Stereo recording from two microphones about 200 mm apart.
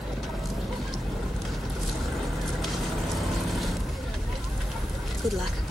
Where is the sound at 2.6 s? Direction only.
Centre (ahead or behind).